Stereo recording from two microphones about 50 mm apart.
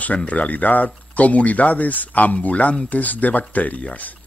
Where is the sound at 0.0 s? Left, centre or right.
Left.